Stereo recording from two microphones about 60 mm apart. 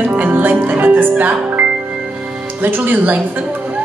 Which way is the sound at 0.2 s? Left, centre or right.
Right.